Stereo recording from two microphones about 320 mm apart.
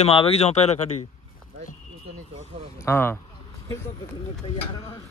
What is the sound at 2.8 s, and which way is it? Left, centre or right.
Speech, centre.